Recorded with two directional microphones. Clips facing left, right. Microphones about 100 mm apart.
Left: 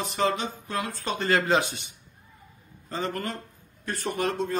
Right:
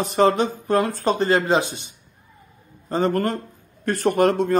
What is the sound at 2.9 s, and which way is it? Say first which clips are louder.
Speech: right 10 dB; 45° right (ahead or behind).